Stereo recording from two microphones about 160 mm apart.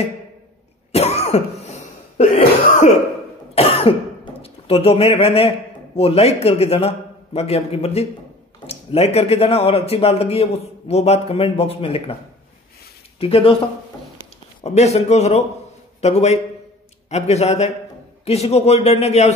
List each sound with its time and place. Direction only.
0.9 s cough: 40° left (ahead or behind)
3.5 s throat clearing: 40° left (ahead or behind)
5.9 s speech: 40° left (ahead or behind)
13.2 s speech: 35° left (ahead or behind)
14.6 s a man's voice: 45° left (ahead or behind)